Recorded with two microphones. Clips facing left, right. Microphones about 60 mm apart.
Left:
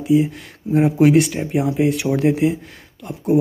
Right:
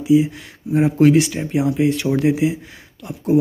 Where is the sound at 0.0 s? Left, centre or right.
Centre.